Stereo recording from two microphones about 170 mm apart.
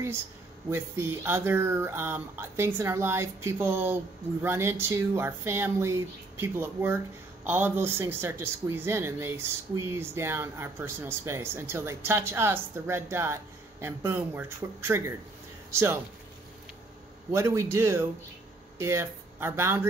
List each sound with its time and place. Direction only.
0.7 s speech: 15° right (ahead or behind)
17.3 s speech: 15° right (ahead or behind)